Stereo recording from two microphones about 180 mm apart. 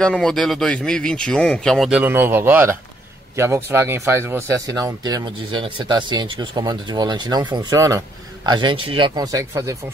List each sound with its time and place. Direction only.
0.0 s speech: 5° left (ahead or behind); by 9.8 s 15° right (ahead or behind)